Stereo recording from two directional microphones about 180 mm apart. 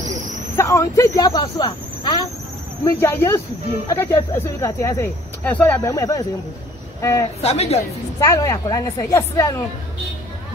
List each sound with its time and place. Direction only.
0.6 s speech: 15° left (ahead or behind)
2.8 s a woman's voice: 15° left (ahead or behind)
7.4 s a woman's voice: 35° left (ahead or behind)
8.2 s speech: 15° left (ahead or behind)